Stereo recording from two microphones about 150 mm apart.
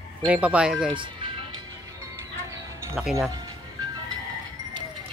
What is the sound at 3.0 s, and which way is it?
Speech, 5° right (ahead or behind).